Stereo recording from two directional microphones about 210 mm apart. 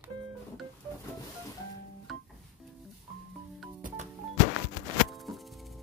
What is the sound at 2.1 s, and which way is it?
Music, centre (ahead or behind).